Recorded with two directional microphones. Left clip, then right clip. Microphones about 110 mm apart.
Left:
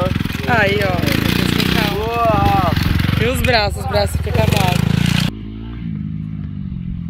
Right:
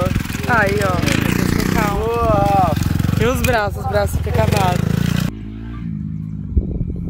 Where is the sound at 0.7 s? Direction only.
55° right (ahead or behind).